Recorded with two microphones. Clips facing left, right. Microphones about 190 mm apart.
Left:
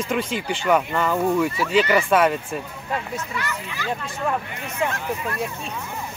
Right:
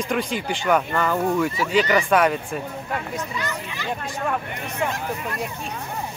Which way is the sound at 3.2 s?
20° right (ahead or behind).